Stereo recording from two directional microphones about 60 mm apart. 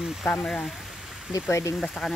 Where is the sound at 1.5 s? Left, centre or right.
Left.